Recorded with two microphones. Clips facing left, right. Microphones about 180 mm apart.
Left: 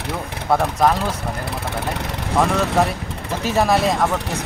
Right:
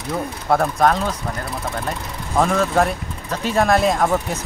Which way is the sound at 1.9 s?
80° left.